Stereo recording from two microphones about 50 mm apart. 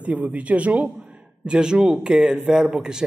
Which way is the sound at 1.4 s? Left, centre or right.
Centre.